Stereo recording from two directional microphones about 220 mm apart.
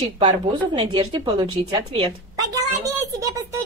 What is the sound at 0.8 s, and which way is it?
Speech, 20° right (ahead or behind).